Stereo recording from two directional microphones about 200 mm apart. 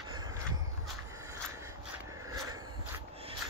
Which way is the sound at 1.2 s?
15° right (ahead or behind).